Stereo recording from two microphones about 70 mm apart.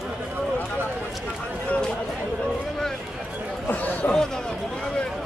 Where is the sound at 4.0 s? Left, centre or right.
Centre.